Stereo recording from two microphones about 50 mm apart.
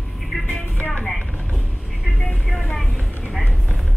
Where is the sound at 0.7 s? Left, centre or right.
Left.